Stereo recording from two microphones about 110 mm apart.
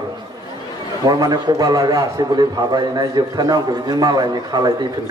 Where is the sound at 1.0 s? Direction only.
35° right (ahead or behind).